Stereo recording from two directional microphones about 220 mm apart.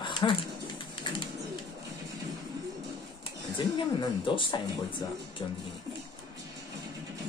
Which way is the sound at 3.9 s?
20° left (ahead or behind).